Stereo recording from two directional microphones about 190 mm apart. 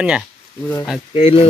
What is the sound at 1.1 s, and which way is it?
Speech, 30° left (ahead or behind).